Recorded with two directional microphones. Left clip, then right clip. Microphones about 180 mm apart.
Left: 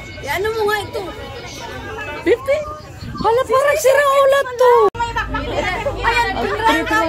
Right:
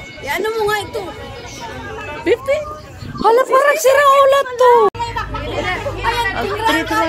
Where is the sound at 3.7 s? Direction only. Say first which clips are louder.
Right 2 dB; 5° left (ahead or behind).